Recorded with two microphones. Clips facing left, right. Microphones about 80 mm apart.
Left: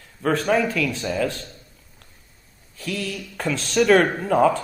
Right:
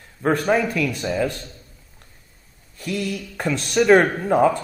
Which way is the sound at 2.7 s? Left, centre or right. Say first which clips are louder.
Right 3 dB; right.